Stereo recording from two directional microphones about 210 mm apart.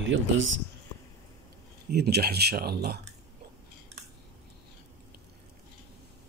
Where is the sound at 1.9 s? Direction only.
50° right (ahead or behind).